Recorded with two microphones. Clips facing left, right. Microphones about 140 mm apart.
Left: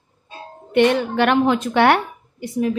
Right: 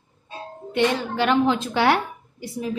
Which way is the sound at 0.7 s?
60° left (ahead or behind).